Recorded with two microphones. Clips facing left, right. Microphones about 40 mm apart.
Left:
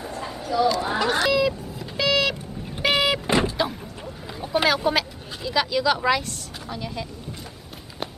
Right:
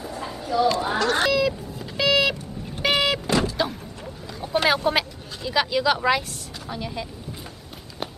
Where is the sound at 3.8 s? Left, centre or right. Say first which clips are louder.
Left 1 dB; centre.